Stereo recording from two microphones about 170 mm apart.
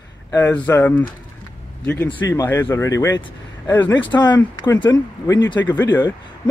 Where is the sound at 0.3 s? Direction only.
10° left (ahead or behind).